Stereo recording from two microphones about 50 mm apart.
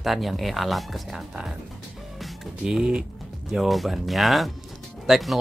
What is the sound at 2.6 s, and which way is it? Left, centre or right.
Speech, centre.